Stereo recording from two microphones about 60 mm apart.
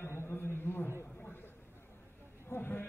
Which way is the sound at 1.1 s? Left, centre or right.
Left.